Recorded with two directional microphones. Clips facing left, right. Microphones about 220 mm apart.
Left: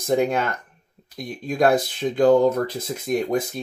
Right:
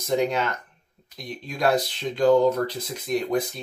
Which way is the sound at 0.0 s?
50° left (ahead or behind).